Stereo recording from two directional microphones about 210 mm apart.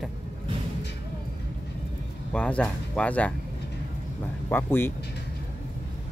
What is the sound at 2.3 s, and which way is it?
Speech, 5° left (ahead or behind).